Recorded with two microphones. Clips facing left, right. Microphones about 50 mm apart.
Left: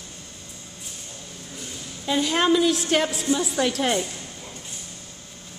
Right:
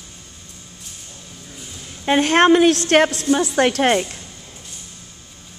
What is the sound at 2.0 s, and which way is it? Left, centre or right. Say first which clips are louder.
A woman's voice: right 7 dB; right.